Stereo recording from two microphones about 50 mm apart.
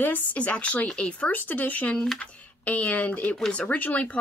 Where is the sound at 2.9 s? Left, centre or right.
Left.